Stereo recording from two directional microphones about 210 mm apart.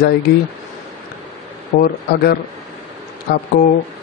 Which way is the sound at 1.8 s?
45° left (ahead or behind).